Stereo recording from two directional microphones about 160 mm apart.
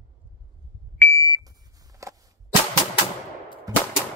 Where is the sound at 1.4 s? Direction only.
25° right (ahead or behind).